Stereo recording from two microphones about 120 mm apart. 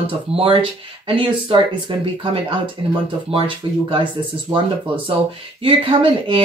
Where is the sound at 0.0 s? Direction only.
50° right (ahead or behind).